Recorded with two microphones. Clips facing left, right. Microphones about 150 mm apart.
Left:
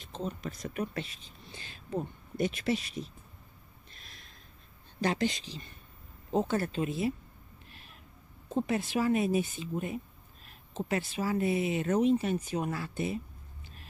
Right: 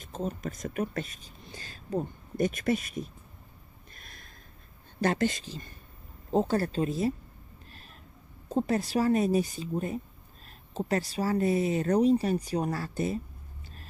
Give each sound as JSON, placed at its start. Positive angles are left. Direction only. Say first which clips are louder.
{"t": 0.0, "sound": "speech", "louder": "right 3 dB", "side_deg": -45}
{"t": 3.9, "sound": "gasp", "louder": "right 3 dB", "side_deg": -50}
{"t": 5.0, "sound": "speech", "louder": "right 3 dB", "side_deg": -50}
{"t": 8.5, "sound": "speech", "louder": "right 3 dB", "side_deg": -40}